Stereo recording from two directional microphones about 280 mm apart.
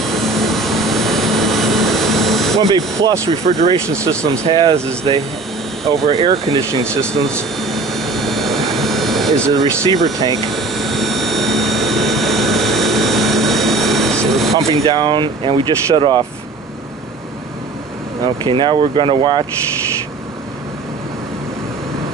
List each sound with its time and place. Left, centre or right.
0.0 s vehicle: centre
2.7 s speech: centre
3.8 s speech: centre
7.3 s vehicle: centre
10.5 s a sound: centre
14.7 s speech: centre
18.2 s speech: centre